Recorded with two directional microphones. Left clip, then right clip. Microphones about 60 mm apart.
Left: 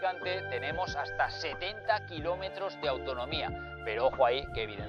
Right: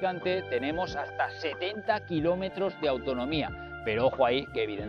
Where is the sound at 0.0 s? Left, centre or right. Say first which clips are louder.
Right 3 dB; left.